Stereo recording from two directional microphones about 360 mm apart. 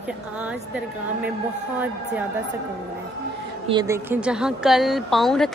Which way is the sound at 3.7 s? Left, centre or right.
Centre.